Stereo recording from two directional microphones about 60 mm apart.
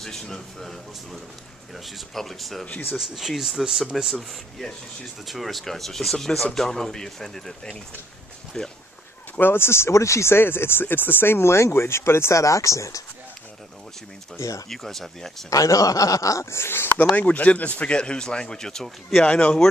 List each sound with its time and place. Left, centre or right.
0.0 s speech: centre
1.9 s speech: centre
9.4 s speech: left
14.7 s speech: centre
15.5 s a man's voice: left
16.4 s speech: left
17.1 s speech: left; by 19.2 s centre
19.2 s speech: centre